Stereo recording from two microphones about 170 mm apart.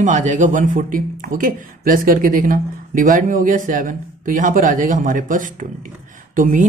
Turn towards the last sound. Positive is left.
turn(degrees=-50)  # may be behind; listen again after turning